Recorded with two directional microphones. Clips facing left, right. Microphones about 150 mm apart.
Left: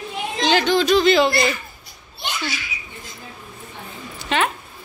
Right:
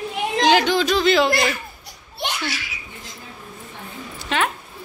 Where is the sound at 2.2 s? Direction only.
70° right (ahead or behind).